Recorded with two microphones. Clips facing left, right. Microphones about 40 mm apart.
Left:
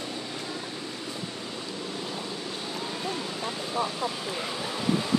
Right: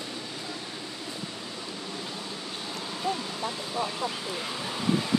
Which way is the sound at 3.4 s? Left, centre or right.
Centre.